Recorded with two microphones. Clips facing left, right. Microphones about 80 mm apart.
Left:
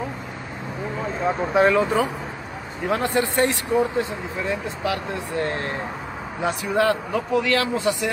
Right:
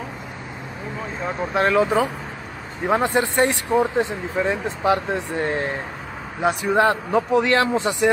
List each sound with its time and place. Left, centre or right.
1.2 s speech: centre
2.9 s speech: right
6.6 s speech: right